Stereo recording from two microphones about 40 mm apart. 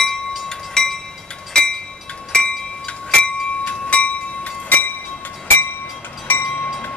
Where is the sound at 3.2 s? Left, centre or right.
Left.